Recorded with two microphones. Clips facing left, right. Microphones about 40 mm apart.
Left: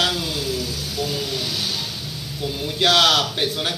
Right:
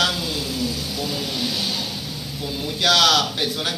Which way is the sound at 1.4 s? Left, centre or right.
Right.